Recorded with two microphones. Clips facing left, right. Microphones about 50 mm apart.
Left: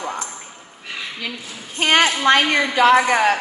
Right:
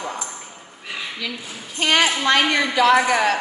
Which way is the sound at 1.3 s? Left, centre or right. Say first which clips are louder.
Even; centre.